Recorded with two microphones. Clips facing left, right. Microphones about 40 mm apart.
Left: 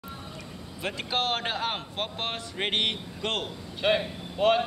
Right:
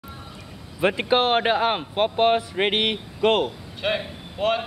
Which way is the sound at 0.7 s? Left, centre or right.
Right.